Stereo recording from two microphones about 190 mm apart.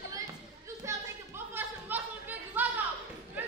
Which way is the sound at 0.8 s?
15° right (ahead or behind).